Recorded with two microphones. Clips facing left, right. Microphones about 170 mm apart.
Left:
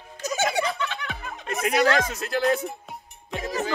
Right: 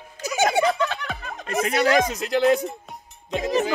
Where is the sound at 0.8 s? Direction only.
40° right (ahead or behind).